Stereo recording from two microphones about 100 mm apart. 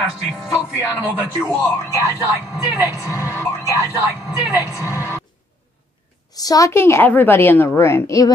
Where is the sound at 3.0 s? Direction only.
30° left (ahead or behind).